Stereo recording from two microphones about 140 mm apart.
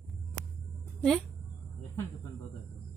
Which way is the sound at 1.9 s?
20° left (ahead or behind).